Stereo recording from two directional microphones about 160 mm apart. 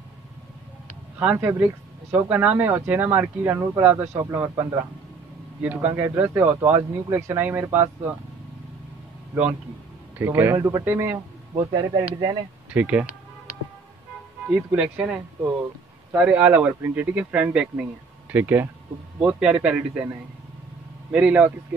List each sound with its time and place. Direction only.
1.2 s speech: 10° right (ahead or behind)
10.1 s speech: 15° right (ahead or behind)
12.7 s speech: 10° right (ahead or behind)
14.5 s speech: 10° right (ahead or behind)
21.1 s speech: 10° right (ahead or behind)